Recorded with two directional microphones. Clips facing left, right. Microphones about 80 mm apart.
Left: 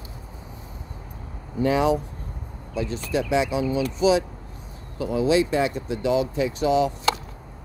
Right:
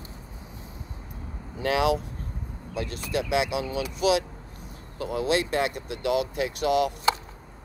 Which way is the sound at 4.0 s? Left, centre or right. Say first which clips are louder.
Left 2 dB; right.